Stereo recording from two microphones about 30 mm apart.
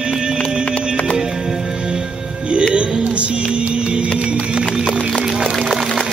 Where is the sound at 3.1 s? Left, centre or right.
Right.